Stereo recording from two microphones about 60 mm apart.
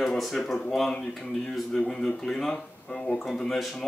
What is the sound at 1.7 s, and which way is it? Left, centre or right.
Speech, centre.